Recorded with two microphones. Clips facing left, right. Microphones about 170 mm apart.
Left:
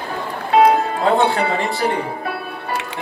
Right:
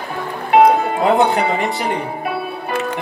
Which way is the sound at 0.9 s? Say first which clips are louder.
Right 2 dB; 20° right (ahead or behind).